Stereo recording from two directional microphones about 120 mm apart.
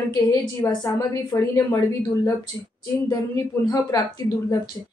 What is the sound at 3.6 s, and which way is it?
Speech, 35° left (ahead or behind).